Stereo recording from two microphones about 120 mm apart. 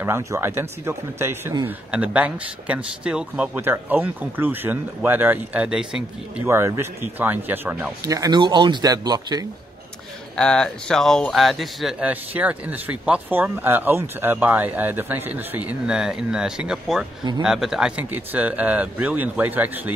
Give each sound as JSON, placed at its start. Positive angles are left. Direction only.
{"t": 0.0, "sound": "speech", "side_deg": -20}
{"t": 1.9, "sound": "speech", "side_deg": -10}
{"t": 6.4, "sound": "speech", "side_deg": -20}
{"t": 8.0, "sound": "speech", "side_deg": -30}
{"t": 8.4, "sound": "speech", "side_deg": -40}
{"t": 10.3, "sound": "speech", "side_deg": 5}
{"t": 12.0, "sound": "speech", "side_deg": -10}